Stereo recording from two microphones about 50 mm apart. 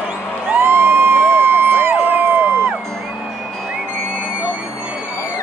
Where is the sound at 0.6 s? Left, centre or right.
Right.